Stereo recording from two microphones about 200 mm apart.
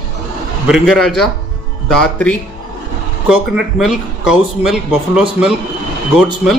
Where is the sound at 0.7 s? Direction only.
Centre (ahead or behind).